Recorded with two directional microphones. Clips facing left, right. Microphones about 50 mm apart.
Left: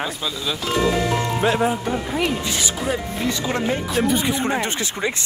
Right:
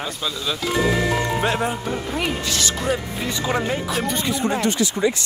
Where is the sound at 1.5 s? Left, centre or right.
Centre.